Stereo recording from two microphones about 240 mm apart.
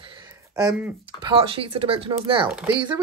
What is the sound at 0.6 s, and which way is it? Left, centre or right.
Speech, centre.